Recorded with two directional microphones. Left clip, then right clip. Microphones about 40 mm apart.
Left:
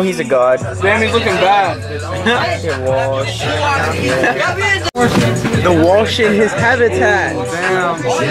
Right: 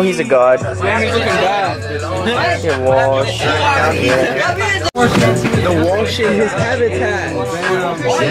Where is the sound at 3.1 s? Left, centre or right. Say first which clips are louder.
Right 3 dB; right.